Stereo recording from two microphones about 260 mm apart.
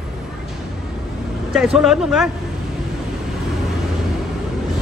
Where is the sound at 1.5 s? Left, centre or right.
Centre.